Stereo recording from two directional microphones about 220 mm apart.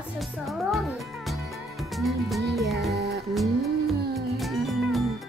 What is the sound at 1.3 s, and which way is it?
Music, centre (ahead or behind).